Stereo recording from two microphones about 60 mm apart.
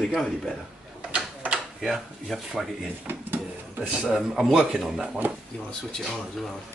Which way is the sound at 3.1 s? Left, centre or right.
Right.